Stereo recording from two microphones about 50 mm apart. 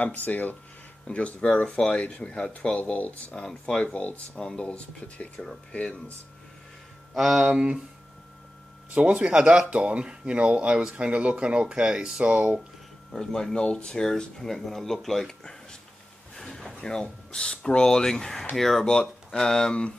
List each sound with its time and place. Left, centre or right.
0.0 s speech: left
1.0 s speech: left
3.3 s speech: centre
7.2 s speech: centre
7.4 s speech: right
8.9 s speech: right
13.1 s speech: centre
15.2 s a sound: centre
16.8 s speech: centre